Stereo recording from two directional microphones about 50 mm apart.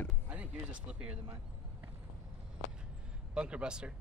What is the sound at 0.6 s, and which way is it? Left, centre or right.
Speech, right.